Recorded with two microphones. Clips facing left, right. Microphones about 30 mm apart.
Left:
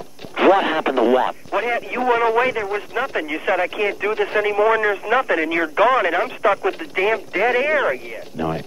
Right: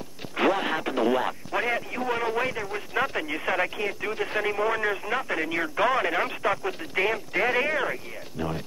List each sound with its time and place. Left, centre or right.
0.4 s speech: left
1.0 s speech: centre
1.8 s speech: left
2.9 s speech: centre
3.7 s speech: left
7.1 s speech: centre
7.7 s speech: left